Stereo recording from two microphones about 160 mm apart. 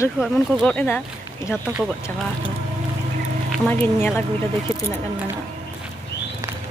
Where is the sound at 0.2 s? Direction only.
Centre (ahead or behind).